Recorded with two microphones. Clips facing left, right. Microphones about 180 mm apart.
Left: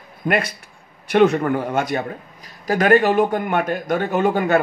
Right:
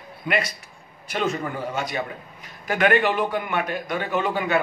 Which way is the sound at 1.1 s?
60° left (ahead or behind).